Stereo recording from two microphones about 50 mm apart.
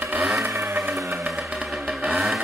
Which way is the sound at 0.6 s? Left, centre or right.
Right.